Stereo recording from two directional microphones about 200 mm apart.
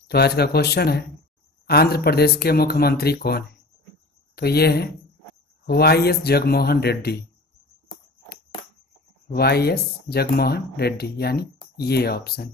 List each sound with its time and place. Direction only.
0.1 s speech: 55° left (ahead or behind)
9.3 s speech: 50° left (ahead or behind)